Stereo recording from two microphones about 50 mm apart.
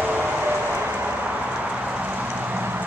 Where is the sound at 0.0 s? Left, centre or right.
Right.